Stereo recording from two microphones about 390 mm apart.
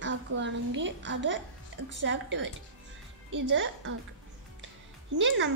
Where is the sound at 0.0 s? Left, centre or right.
Right.